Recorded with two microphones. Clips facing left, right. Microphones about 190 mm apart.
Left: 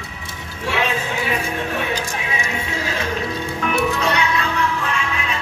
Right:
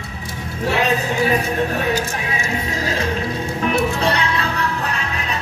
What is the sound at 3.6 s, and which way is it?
Music, 35° right (ahead or behind).